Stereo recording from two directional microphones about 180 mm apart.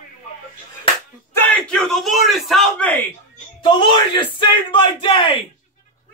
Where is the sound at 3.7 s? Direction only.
25° left (ahead or behind).